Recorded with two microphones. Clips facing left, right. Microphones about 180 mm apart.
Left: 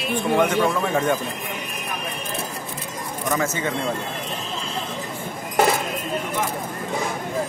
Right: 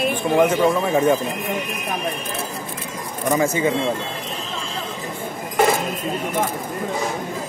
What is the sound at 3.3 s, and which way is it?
Speech, 10° right (ahead or behind).